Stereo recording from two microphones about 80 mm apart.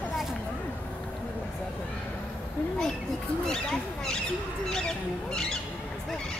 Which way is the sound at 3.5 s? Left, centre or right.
Centre.